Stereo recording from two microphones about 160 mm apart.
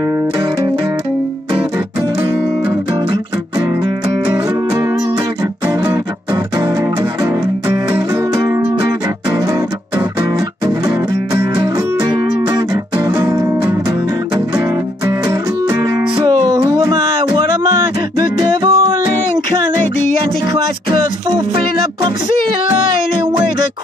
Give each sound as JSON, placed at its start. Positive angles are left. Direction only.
{"t": 7.6, "sound": "music", "side_deg": -15}
{"t": 11.6, "sound": "music", "side_deg": -25}
{"t": 16.4, "sound": "music", "side_deg": -20}
{"t": 18.4, "sound": "music", "side_deg": -30}